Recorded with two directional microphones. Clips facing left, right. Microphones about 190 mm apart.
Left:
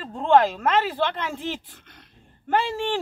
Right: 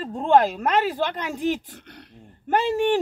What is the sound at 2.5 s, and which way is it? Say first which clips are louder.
Speech: right 3 dB; 15° right (ahead or behind).